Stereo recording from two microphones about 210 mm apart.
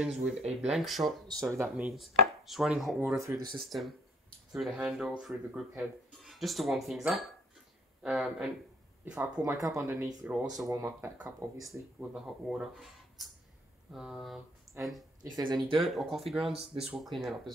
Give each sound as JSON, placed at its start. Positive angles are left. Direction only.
{"t": 0.7, "sound": "speech", "side_deg": 0}
{"t": 3.0, "sound": "speech", "side_deg": -10}
{"t": 3.5, "sound": "speech", "side_deg": 0}
{"t": 11.6, "sound": "speech", "side_deg": -5}
{"t": 15.3, "sound": "speech", "side_deg": -20}
{"t": 15.8, "sound": "speech", "side_deg": 0}